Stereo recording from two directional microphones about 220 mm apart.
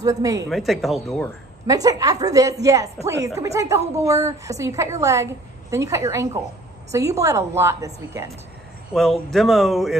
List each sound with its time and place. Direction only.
0.0 s a woman's voice: 15° right (ahead or behind)
0.5 s speech: centre (ahead or behind)
1.7 s a woman's voice: 15° right (ahead or behind)
8.9 s speech: centre (ahead or behind)